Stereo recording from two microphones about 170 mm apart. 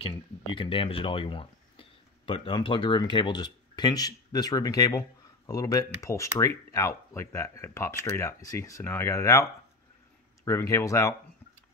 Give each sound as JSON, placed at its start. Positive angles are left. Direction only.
{"t": 0.0, "sound": "speech", "side_deg": 30}